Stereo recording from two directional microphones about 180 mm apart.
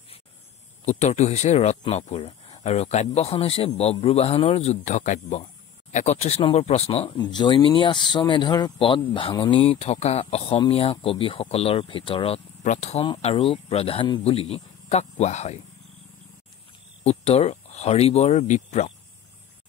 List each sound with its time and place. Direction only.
0.8 s speech: 40° left (ahead or behind)
17.0 s speech: 35° left (ahead or behind)